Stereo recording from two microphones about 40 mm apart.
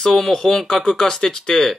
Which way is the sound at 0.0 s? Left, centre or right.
Centre.